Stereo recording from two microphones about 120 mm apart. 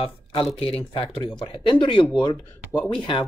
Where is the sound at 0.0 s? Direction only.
50° left (ahead or behind).